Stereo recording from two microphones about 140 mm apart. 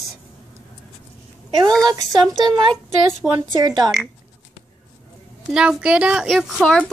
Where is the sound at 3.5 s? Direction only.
30° right (ahead or behind).